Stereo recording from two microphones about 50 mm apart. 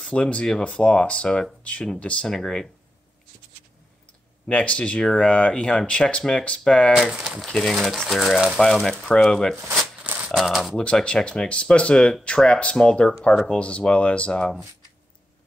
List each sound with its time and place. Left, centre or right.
0.0 s speech: centre
2.2 s speech: centre
4.5 s speech: left
7.4 s speech: centre
11.1 s speech: centre